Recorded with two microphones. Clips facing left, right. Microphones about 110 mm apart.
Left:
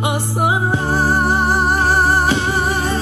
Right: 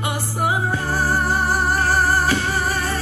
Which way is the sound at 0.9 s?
20° left (ahead or behind).